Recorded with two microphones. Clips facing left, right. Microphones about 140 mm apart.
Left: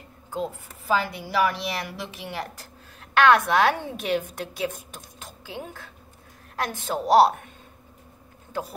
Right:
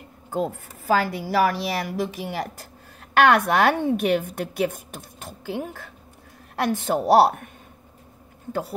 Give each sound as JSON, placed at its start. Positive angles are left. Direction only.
{"t": 0.3, "sound": "a woman's voice", "side_deg": -55}
{"t": 3.3, "sound": "a woman's voice", "side_deg": -55}